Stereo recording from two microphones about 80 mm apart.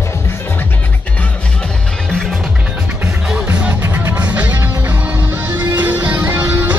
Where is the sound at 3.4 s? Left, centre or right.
Centre.